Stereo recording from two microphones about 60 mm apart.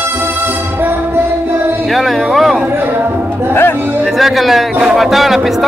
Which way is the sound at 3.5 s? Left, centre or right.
Left.